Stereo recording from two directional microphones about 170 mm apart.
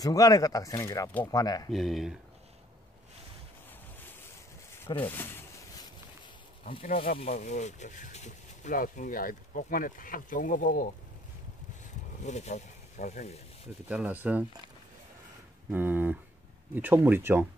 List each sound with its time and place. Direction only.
0.0 s speech: 20° left (ahead or behind)
1.7 s speech: centre (ahead or behind)
5.0 s a sound: 15° left (ahead or behind)
7.1 s speech: 50° left (ahead or behind)
12.3 s speech: 40° left (ahead or behind)
13.8 s speech: 10° right (ahead or behind)
15.7 s speech: 10° right (ahead or behind)